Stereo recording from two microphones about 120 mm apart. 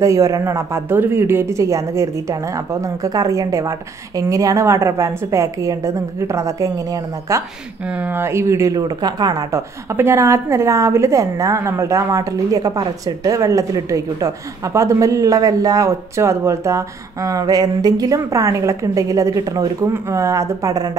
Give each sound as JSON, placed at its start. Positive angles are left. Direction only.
{"t": 0.0, "sound": "speech", "side_deg": -25}
{"t": 7.8, "sound": "speech", "side_deg": -10}